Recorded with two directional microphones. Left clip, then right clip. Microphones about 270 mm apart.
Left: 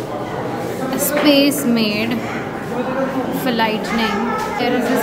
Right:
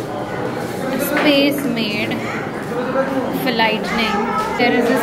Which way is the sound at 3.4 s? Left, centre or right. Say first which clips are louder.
Right 1 dB; centre.